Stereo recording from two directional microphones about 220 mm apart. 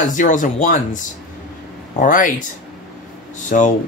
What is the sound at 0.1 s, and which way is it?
Speech, 35° left (ahead or behind).